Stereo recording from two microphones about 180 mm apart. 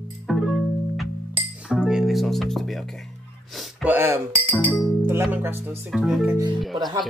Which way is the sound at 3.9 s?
10° right (ahead or behind).